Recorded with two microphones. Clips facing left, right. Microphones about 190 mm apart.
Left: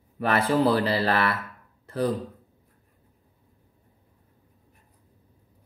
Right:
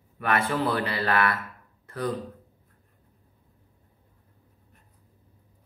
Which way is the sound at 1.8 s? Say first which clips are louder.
Left 5 dB; 30° left (ahead or behind).